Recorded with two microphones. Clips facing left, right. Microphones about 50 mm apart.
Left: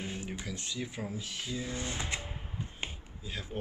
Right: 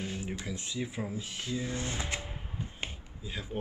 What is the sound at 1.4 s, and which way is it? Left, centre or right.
Speech, centre.